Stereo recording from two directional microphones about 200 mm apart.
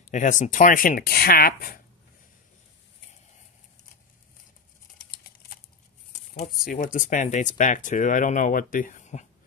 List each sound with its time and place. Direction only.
0.0 s speech: 40° left (ahead or behind)
6.1 s a sound: 35° left (ahead or behind)
6.6 s speech: 40° left (ahead or behind)